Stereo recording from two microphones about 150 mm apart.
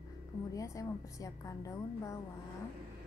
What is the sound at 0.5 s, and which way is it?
A woman's voice, 20° left (ahead or behind).